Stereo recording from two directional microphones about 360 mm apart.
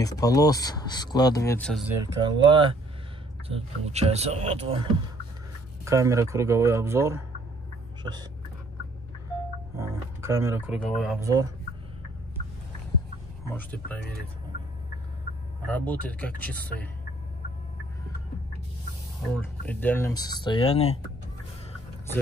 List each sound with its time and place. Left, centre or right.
0.0 s speech: centre
2.2 s speech: centre
5.9 s speech: centre
9.8 s music: centre
11.0 s speech: centre
13.5 s speech: centre
15.6 s speech: centre
19.3 s speech: centre